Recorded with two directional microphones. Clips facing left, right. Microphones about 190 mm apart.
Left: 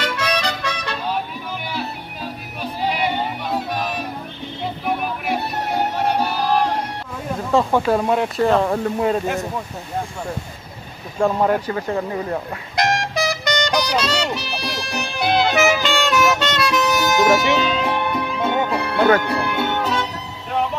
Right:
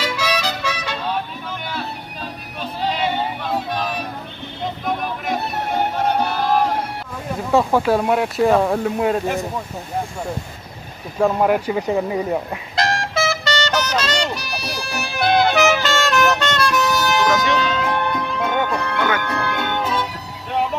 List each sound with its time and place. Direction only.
0.0 s music: 5° right (ahead or behind)
2.6 s music: 10° left (ahead or behind)
7.5 s speech: 5° right (ahead or behind)
11.1 s speech: 5° right (ahead or behind)
12.7 s music: 20° left (ahead or behind)
14.3 s music: 30° left (ahead or behind)
14.6 s music: centre (ahead or behind)
16.9 s music: 20° left (ahead or behind)
18.9 s speech: 35° left (ahead or behind)
19.3 s music: 10° left (ahead or behind)
19.8 s music: 5° right (ahead or behind)